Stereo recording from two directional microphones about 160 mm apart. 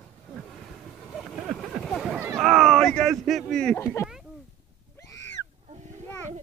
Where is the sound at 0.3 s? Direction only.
Centre (ahead or behind).